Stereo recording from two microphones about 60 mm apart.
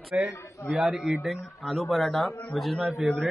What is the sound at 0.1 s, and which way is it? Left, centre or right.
A man's voice, centre.